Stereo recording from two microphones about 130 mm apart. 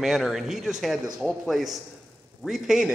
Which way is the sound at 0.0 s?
Centre (ahead or behind).